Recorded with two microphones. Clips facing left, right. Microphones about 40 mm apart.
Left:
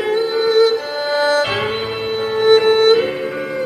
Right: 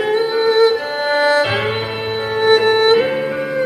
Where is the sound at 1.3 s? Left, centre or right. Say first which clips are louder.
Right 1 dB; centre.